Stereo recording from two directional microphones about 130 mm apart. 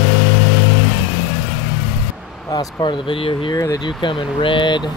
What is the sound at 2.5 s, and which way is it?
Speech, 40° left (ahead or behind).